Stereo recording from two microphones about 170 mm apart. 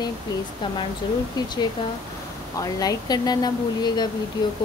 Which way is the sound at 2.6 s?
20° left (ahead or behind).